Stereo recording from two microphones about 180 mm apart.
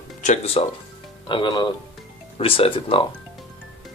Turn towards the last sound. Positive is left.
turn(degrees=30)  # may be behind; listen again after turning